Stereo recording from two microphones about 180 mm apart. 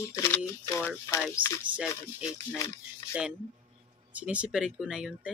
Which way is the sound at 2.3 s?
15° left (ahead or behind).